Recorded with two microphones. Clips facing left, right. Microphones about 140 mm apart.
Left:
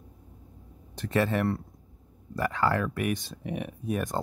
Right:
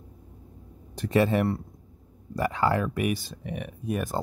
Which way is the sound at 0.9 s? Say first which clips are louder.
Right 4 dB; 15° right (ahead or behind).